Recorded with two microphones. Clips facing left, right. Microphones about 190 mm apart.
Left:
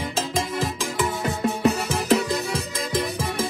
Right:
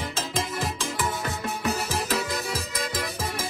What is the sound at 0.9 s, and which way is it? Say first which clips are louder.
Music: left 4 dB; 20° left (ahead or behind).